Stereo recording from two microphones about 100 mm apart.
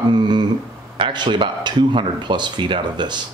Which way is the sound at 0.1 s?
50° right (ahead or behind).